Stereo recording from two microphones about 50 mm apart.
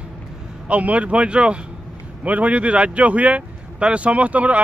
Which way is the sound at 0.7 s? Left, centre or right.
Right.